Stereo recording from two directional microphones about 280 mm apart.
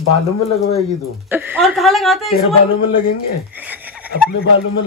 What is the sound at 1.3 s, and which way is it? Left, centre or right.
A woman's voice, centre.